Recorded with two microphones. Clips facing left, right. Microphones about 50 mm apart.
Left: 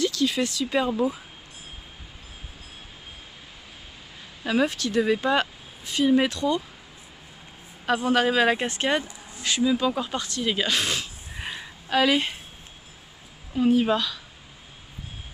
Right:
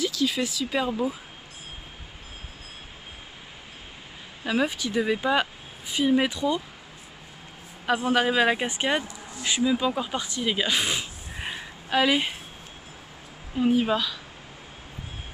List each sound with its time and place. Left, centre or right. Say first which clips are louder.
0.0 s speech: left 2 dB; centre
4.5 s speech: left 2 dB; centre
7.8 s speech: left 1 dB; centre
9.0 s a sound: right 2 dB; right
9.4 s speech: left 1 dB; centre
10.4 s a sound: even; centre
13.6 s speech: left 2 dB; centre